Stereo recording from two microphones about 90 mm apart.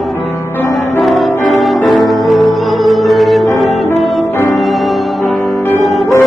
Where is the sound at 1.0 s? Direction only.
Centre (ahead or behind).